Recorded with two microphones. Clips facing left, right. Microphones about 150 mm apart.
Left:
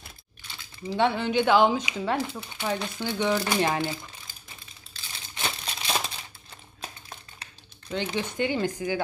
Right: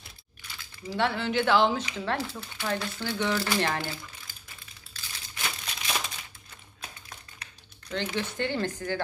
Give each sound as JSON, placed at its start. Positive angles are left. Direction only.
{"t": 0.5, "sound": "speech", "side_deg": 20}
{"t": 4.9, "sound": "crumpling", "side_deg": 20}
{"t": 7.9, "sound": "speech", "side_deg": 15}